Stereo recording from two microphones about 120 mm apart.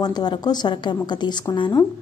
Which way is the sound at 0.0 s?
35° left (ahead or behind).